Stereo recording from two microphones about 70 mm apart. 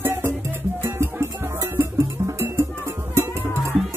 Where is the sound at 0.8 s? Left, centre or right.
Right.